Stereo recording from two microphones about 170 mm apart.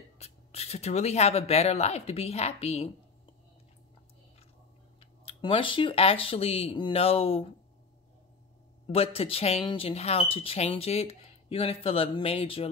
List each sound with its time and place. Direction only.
0.2 s speech: 35° left (ahead or behind)
5.2 s speech: 30° left (ahead or behind)
8.9 s speech: 35° left (ahead or behind)